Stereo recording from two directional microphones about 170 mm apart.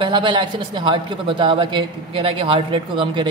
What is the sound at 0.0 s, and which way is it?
Speech, 30° right (ahead or behind).